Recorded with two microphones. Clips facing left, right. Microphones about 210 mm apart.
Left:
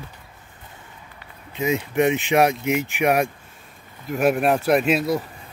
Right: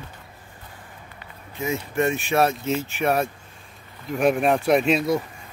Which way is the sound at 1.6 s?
20° left (ahead or behind).